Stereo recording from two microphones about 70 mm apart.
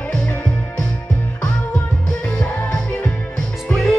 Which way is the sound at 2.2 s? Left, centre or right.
Centre.